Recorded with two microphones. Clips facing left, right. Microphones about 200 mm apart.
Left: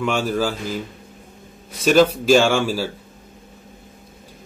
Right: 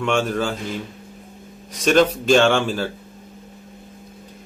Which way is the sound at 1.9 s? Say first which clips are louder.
Left 1 dB; 5° left (ahead or behind).